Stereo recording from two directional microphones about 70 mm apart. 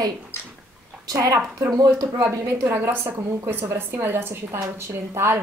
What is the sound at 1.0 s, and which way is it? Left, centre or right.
A woman's voice, right.